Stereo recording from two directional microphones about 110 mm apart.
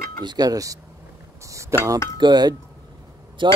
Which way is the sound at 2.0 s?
40° right (ahead or behind).